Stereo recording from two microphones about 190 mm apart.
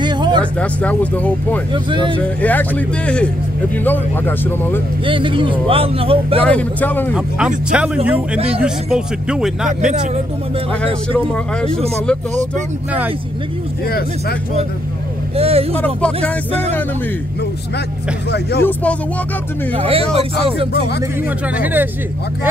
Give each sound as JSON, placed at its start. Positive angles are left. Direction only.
{"t": 0.0, "sound": "a sound", "side_deg": -25}
{"t": 0.4, "sound": "speech", "side_deg": 5}
{"t": 1.7, "sound": "speech", "side_deg": -25}
{"t": 2.4, "sound": "speech", "side_deg": 10}
{"t": 5.0, "sound": "speech", "side_deg": -25}
{"t": 6.4, "sound": "speech", "side_deg": 5}
{"t": 7.2, "sound": "a man's voice", "side_deg": -5}
{"t": 11.1, "sound": "speech", "side_deg": 5}
{"t": 15.3, "sound": "speech", "side_deg": -30}
{"t": 15.8, "sound": "a man's voice", "side_deg": 5}
{"t": 18.6, "sound": "speech", "side_deg": 10}
{"t": 19.7, "sound": "speech", "side_deg": -30}
{"t": 21.5, "sound": "speech", "side_deg": -10}